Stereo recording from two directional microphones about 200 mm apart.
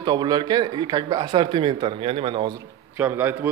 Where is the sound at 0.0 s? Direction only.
20° right (ahead or behind).